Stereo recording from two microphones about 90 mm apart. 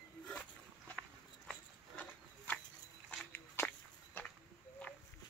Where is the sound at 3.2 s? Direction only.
20° left (ahead or behind).